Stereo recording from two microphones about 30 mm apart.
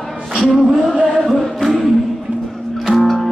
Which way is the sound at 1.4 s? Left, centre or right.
Centre.